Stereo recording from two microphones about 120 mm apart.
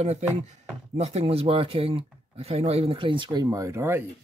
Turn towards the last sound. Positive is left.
turn(degrees=-20)  # may be behind; listen again after turning